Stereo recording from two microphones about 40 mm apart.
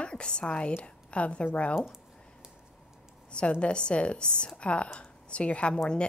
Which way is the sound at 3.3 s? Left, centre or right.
Left.